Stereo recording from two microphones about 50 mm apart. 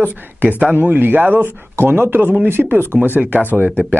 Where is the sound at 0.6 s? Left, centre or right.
Right.